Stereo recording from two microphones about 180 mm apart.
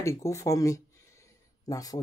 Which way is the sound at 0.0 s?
15° left (ahead or behind).